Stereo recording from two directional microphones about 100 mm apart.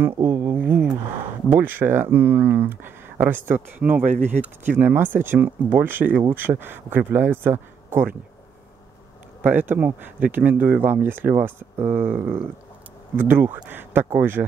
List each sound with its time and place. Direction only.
0.0 s a sound: 20° right (ahead or behind)
1.5 s speech: 20° right (ahead or behind)
9.4 s speech: 20° right (ahead or behind)